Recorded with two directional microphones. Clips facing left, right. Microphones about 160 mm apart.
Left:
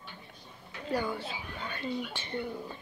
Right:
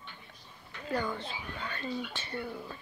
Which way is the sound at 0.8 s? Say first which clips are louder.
Left 1 dB; 10° left (ahead or behind).